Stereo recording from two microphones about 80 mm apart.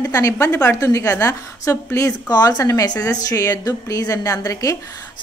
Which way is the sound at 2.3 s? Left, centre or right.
Left.